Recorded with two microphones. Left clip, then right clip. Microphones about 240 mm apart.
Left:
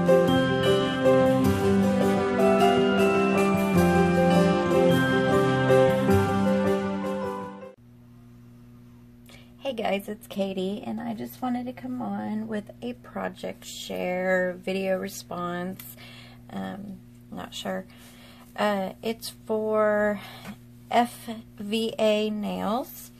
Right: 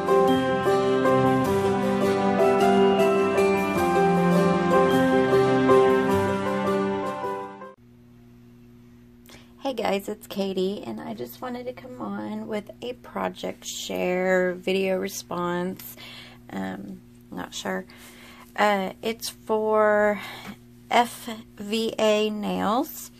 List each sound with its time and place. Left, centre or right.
0.0 s music: centre
9.6 s speech: right